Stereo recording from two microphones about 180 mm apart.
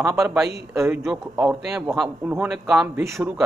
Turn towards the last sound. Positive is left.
turn(degrees=-15)  # may be behind; listen again after turning